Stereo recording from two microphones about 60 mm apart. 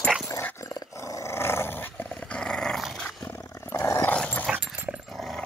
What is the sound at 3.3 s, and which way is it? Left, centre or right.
Roar, left.